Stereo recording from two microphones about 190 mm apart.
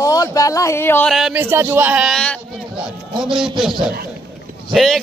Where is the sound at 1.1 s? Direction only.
5° right (ahead or behind).